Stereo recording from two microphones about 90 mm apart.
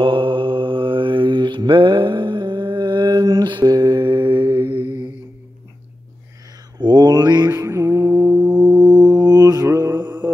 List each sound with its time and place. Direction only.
0.0 s mantra: 70° right (ahead or behind)
6.8 s mantra: 50° right (ahead or behind)
7.5 s music: 30° right (ahead or behind)
8.3 s music: 10° right (ahead or behind)
8.8 s mantra: 50° right (ahead or behind)
9.9 s mantra: 50° right (ahead or behind)